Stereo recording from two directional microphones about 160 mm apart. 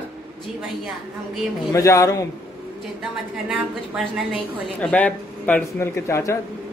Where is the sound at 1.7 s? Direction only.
20° left (ahead or behind).